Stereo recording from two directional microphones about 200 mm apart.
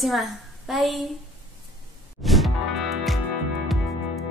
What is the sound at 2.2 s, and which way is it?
Music, centre (ahead or behind).